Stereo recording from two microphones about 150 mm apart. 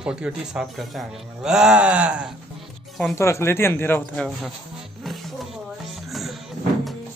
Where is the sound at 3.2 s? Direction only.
20° left (ahead or behind).